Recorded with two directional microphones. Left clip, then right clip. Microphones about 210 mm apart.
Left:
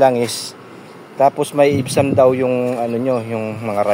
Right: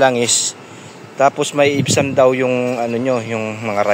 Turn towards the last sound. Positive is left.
turn(degrees=0)  # may be behind; listen again after turning